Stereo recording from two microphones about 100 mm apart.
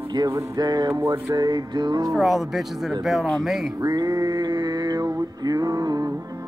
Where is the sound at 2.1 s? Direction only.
5° right (ahead or behind).